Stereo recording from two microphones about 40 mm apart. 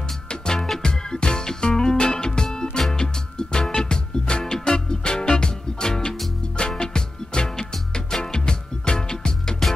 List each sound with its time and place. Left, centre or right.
0.3 s music: centre